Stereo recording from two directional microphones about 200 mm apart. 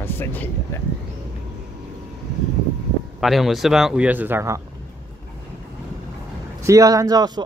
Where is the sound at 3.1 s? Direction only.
Centre (ahead or behind).